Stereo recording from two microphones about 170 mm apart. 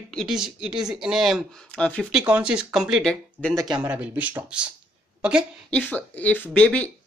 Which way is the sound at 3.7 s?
10° right (ahead or behind).